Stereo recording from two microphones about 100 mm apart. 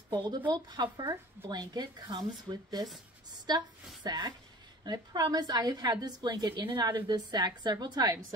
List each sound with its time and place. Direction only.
0.1 s a woman's voice: 45° right (ahead or behind)